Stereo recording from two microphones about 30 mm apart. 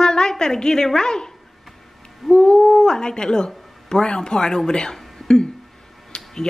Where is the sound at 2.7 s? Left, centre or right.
Left.